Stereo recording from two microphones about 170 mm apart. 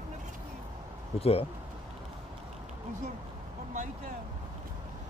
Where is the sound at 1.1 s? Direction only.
35° left (ahead or behind).